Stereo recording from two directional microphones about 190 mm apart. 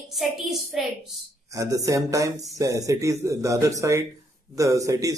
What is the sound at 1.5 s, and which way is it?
Speech, 15° right (ahead or behind).